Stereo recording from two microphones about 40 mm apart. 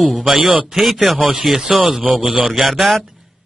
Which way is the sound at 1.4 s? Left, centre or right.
Centre.